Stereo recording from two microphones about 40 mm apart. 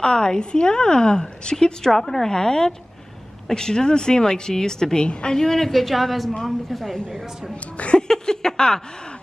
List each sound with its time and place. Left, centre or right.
0.0 s a woman's voice: centre
5.0 s a woman's voice: left; by 7.0 s centre
7.1 s a woman's voice: centre
7.7 s speech: left
8.1 s speech: centre